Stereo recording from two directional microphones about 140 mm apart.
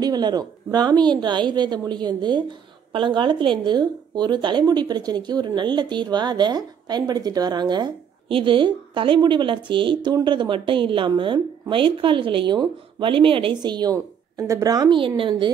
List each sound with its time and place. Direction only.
0.0 s speech: 30° right (ahead or behind)